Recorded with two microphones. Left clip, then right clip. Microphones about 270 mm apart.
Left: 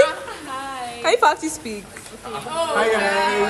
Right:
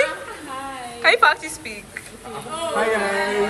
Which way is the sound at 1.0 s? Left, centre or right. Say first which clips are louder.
Right 1 dB; centre.